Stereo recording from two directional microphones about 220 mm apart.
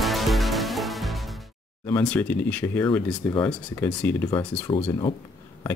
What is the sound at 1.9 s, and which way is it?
Speech, 10° left (ahead or behind).